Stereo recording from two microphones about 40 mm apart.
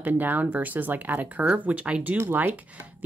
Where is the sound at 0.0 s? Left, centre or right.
Right.